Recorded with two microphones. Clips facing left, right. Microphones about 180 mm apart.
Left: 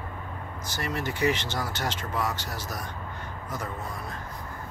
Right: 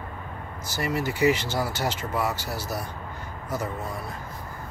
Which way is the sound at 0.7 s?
10° right (ahead or behind).